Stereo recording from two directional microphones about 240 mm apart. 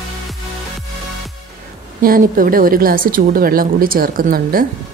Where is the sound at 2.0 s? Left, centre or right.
Right.